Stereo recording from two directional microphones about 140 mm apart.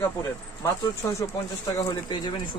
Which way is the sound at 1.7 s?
30° left (ahead or behind).